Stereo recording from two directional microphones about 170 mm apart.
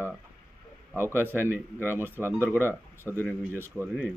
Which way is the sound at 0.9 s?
15° right (ahead or behind).